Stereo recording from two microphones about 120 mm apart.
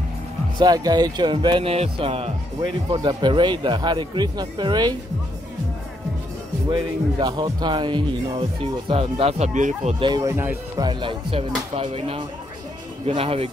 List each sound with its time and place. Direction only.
0.6 s speech: 35° right (ahead or behind)
6.7 s speech: 35° right (ahead or behind); by 9.9 s 90° right
9.9 s speech: 40° right (ahead or behind)
10.2 s speech: 20° right (ahead or behind)
10.8 s speech: 40° right (ahead or behind)